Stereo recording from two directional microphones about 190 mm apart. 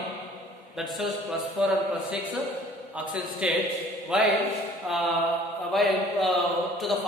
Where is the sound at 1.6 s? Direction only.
5° right (ahead or behind).